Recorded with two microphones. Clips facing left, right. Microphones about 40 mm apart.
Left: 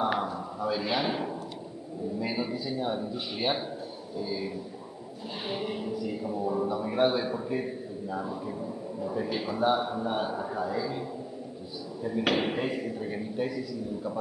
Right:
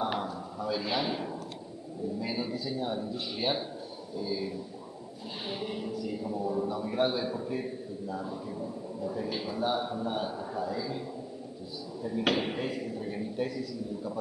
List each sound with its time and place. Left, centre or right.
0.0 s a sound: centre
2.1 s a man's voice: centre
5.5 s a man's voice: centre
12.4 s a man's voice: centre